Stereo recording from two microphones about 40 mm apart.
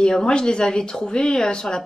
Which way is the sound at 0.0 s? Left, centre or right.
Centre.